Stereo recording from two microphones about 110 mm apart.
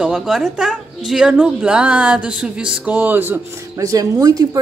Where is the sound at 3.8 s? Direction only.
35° right (ahead or behind).